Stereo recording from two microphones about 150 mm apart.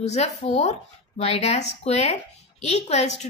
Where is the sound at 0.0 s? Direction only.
50° left (ahead or behind).